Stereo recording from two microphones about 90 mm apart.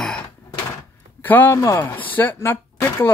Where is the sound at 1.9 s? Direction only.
20° left (ahead or behind).